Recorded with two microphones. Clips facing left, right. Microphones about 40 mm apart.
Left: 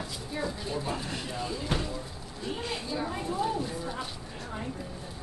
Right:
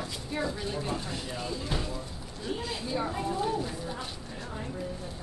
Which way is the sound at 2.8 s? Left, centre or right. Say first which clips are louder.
Right 4 dB; centre.